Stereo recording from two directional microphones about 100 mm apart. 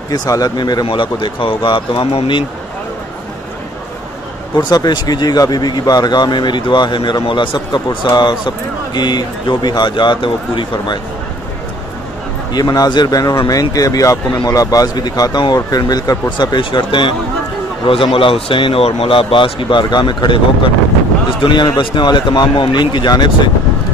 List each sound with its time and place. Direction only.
0.1 s speech: 40° left (ahead or behind)
0.8 s speech: 55° left (ahead or behind)
4.6 s speech: 40° left (ahead or behind)
12.5 s speech: 40° left (ahead or behind)